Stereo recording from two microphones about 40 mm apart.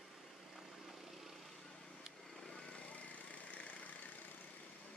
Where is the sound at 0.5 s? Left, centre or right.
Centre.